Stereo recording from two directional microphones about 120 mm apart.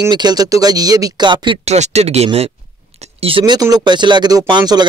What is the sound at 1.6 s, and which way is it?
Speech, 65° right (ahead or behind).